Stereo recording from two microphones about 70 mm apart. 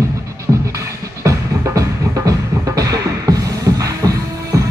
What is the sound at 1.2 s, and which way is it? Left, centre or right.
Music, right.